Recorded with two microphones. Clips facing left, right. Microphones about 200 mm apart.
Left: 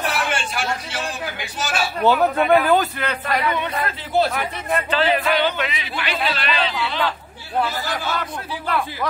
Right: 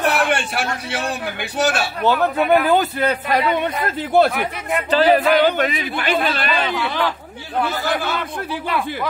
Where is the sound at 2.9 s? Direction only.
35° right (ahead or behind).